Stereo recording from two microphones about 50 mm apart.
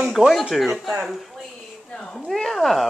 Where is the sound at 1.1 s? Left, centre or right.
Centre.